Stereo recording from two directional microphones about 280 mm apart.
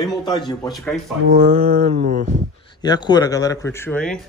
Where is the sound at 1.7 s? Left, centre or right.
Right.